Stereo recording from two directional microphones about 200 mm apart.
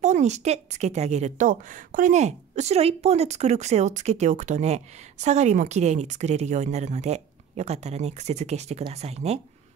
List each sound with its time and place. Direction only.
0.0 s a woman's voice: 35° right (ahead or behind)